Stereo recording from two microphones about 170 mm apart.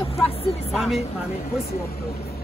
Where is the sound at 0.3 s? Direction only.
35° left (ahead or behind).